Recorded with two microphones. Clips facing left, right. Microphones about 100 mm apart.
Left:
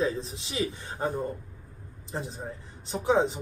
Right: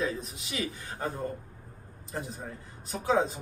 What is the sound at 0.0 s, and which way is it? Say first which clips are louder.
A man's voice: left 4 dB; 30° left (ahead or behind).